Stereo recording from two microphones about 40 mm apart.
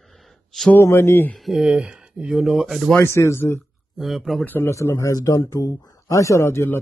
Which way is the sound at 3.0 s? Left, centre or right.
Left.